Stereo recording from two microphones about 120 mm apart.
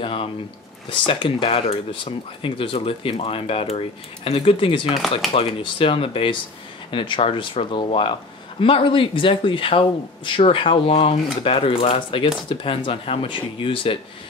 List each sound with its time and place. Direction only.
0.0 s speech: 50° left (ahead or behind)